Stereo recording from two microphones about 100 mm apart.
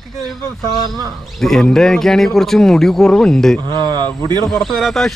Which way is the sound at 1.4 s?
5° left (ahead or behind).